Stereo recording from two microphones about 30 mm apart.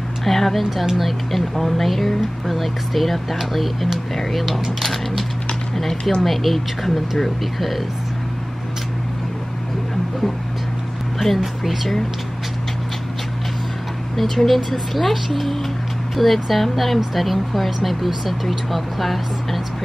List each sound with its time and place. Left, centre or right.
0.2 s a sound: centre
0.7 s speech: centre
4.4 s speech: centre
4.7 s speech: centre
11.1 s speech: centre
14.1 s speech: centre